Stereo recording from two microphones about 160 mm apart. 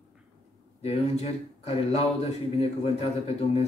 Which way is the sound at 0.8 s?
40° left (ahead or behind).